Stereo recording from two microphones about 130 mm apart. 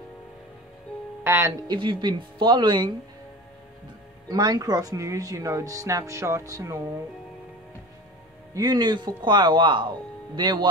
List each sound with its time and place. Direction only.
1.2 s speech: 20° right (ahead or behind)
1.7 s speech: 35° right (ahead or behind)
4.3 s speech: 30° right (ahead or behind)
8.5 s speech: 35° right (ahead or behind)